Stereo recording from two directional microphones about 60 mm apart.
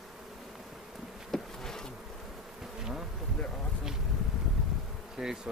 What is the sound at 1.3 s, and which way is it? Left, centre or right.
Insect, centre.